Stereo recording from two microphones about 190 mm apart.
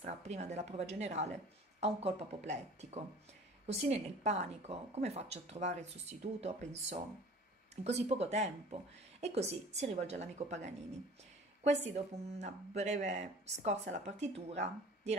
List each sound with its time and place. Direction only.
0.0 s speech: 35° right (ahead or behind)